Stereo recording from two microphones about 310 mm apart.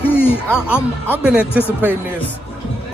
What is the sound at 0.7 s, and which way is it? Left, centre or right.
Speech, centre.